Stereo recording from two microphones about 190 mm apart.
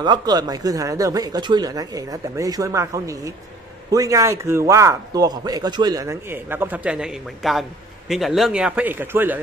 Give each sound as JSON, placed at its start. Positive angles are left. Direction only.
{"t": 0.0, "sound": "a man's voice", "side_deg": -20}